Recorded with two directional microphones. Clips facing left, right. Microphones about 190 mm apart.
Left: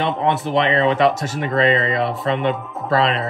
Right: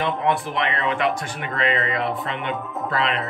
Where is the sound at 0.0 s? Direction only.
25° left (ahead or behind).